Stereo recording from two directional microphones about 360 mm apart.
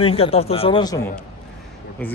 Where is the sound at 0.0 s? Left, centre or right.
Centre.